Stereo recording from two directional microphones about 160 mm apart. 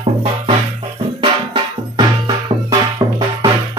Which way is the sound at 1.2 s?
25° right (ahead or behind).